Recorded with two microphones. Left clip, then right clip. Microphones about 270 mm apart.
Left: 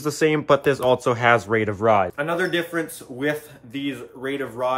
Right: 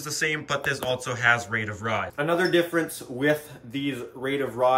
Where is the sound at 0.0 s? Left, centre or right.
Centre.